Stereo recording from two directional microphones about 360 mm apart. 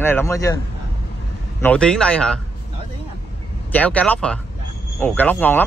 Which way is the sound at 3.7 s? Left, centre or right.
Centre.